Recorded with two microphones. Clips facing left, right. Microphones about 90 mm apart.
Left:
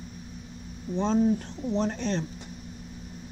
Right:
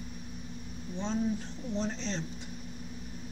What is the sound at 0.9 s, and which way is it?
Speech, 60° left (ahead or behind).